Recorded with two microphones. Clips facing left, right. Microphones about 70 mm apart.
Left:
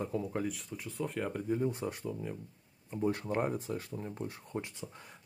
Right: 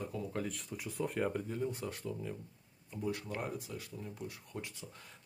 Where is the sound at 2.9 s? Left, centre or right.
Left.